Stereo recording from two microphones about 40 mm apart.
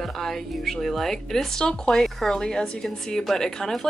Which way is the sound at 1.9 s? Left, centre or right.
Centre.